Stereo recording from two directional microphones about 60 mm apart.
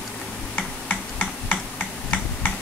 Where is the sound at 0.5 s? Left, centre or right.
Left.